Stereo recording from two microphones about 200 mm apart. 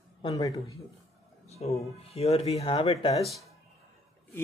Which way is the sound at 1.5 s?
30° left (ahead or behind).